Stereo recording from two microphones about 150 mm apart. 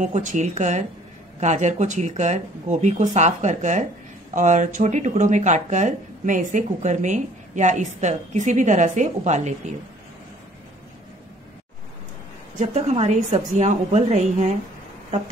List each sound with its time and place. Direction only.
0.0 s speech: 55° right (ahead or behind)
12.5 s speech: 45° right (ahead or behind)